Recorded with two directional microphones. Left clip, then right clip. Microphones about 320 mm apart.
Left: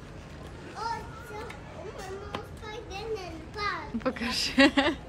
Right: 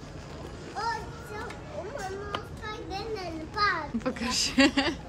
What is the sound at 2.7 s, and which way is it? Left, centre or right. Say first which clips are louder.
Children playing: right 4 dB; right.